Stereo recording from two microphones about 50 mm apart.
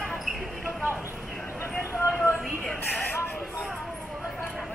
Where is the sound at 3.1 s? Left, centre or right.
Left.